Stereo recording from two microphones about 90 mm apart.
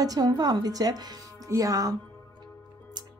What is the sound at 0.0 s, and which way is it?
A woman's voice, 45° right (ahead or behind).